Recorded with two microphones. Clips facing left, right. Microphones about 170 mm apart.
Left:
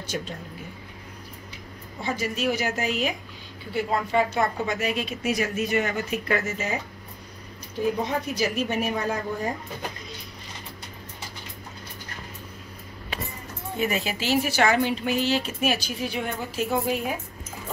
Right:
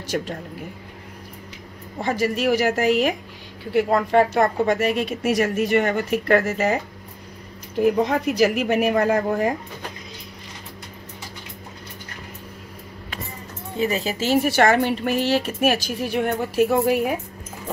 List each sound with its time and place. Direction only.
0.1 s a woman's voice: 55° right (ahead or behind)
2.0 s speech: 75° right (ahead or behind)
3.7 s a woman's voice: 75° right (ahead or behind)
7.8 s speech: 70° right (ahead or behind)
13.7 s speech: 30° right (ahead or behind)
14.2 s a woman's voice: 50° right (ahead or behind)